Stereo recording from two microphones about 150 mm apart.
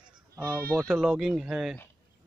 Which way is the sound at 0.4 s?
10° left (ahead or behind).